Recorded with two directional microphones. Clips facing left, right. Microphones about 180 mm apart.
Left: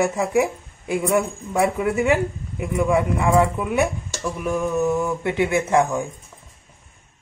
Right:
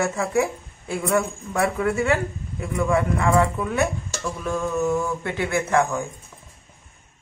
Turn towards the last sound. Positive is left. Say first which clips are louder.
# left 2 dB
turn(degrees=15)  # may be behind; listen again after turning